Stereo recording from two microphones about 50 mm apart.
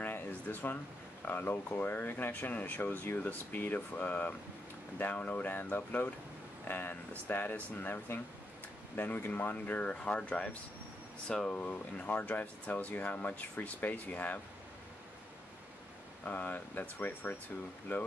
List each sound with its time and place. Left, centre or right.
0.0 s a sound: left
1.2 s speech: left
9.8 s speech: left
16.3 s speech: left
17.9 s speech: left